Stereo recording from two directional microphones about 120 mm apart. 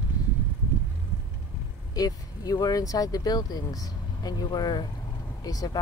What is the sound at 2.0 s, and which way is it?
Speech, 30° left (ahead or behind).